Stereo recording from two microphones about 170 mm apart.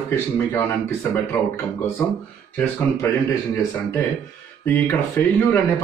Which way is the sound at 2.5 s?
10° left (ahead or behind).